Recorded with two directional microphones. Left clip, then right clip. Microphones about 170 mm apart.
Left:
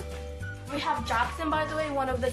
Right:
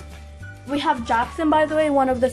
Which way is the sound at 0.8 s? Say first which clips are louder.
Right 7 dB; 45° right (ahead or behind).